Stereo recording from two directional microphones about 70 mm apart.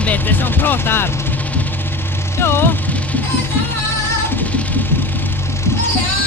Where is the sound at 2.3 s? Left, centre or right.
Left.